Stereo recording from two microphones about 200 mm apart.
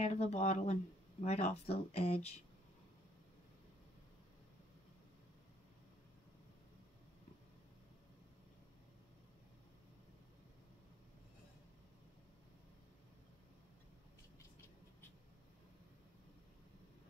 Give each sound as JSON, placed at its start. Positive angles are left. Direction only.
{"t": 0.0, "sound": "speech", "side_deg": 35}